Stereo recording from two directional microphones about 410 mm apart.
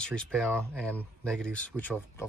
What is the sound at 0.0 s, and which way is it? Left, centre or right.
Speech, centre.